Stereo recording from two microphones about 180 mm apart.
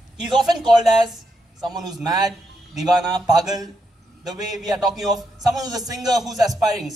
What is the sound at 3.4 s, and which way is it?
Speech, 20° right (ahead or behind).